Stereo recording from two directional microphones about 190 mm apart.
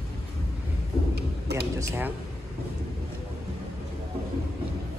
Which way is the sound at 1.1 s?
60° right (ahead or behind).